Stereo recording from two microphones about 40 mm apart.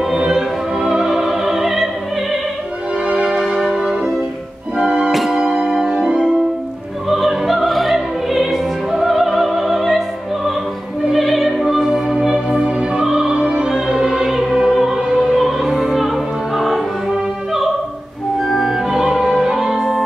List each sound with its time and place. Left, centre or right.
0.0 s opera: centre
3.1 s music: right
3.3 s music: centre
3.8 s french horn: centre
4.7 s music: centre
5.1 s music: centre
7.1 s opera: centre
11.6 s music: centre
12.3 s music: centre
15.0 s opera: centre
18.4 s music: centre
18.9 s opera: centre